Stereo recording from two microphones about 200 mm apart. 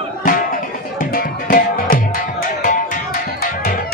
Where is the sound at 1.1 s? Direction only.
45° left (ahead or behind).